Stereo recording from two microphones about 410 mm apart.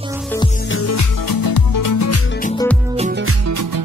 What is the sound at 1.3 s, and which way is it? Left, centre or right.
Music, left.